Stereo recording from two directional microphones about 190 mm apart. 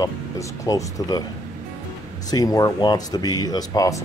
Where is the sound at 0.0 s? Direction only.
15° left (ahead or behind).